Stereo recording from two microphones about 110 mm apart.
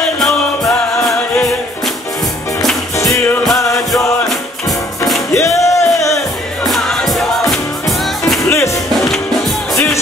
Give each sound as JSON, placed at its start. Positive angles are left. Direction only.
{"t": 0.0, "sound": "music", "side_deg": 5}
{"t": 5.3, "sound": "music", "side_deg": 25}
{"t": 6.1, "sound": "music", "side_deg": 0}
{"t": 8.5, "sound": "music", "side_deg": 25}